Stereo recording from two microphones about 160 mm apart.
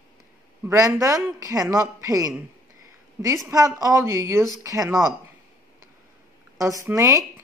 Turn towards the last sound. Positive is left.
turn(degrees=-20)  # may be behind; listen again after turning